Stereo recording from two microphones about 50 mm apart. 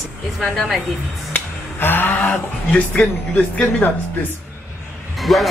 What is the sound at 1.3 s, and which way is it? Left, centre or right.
Music, left.